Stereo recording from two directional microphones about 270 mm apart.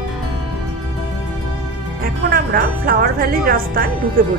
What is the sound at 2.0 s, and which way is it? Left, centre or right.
A woman's voice, right.